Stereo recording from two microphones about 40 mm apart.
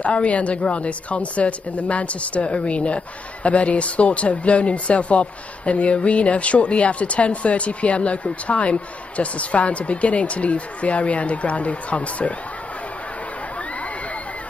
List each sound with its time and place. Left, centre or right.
0.0 s speech: left